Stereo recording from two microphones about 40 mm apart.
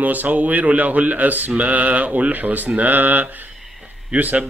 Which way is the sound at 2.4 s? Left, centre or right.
Right.